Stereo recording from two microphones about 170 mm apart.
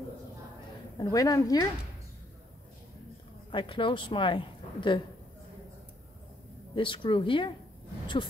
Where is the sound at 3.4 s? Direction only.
30° left (ahead or behind).